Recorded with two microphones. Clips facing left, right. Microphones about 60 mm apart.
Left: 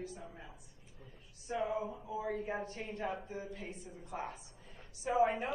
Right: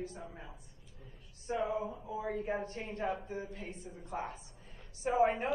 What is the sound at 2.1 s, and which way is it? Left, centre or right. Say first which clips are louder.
Speech: right 1 dB; centre.